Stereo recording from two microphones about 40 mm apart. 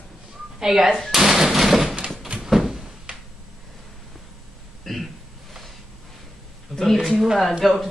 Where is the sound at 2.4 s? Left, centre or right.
Centre.